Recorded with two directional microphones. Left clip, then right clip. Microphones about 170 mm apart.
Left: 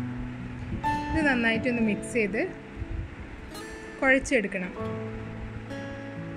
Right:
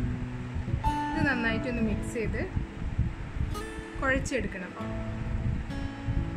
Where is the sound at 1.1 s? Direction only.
20° left (ahead or behind).